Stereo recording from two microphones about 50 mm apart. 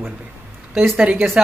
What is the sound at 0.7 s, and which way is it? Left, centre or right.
Speech, centre.